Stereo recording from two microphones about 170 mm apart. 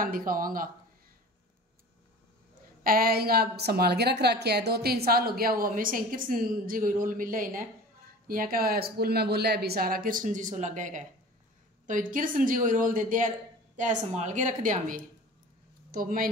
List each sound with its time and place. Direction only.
0.0 s speech: 55° right (ahead or behind)
2.8 s a woman's voice: 60° right (ahead or behind)